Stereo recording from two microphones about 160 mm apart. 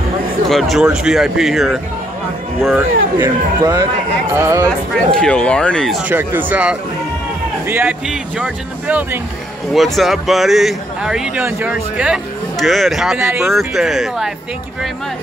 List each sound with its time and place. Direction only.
0.5 s speech: centre (ahead or behind)
2.7 s speech: 15° right (ahead or behind)
5.1 s speech: 5° left (ahead or behind)
6.0 s speech: 10° right (ahead or behind)